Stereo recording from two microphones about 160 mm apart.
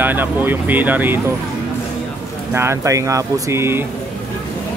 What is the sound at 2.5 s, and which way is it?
Speech, 15° right (ahead or behind).